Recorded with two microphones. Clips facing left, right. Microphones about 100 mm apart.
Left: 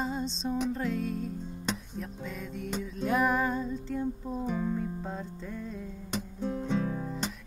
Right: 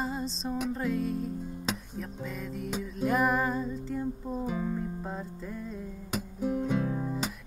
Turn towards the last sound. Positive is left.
turn(degrees=-5)  # may be behind; listen again after turning